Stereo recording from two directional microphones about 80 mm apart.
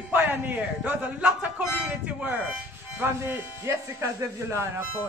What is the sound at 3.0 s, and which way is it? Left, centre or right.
Speech, right.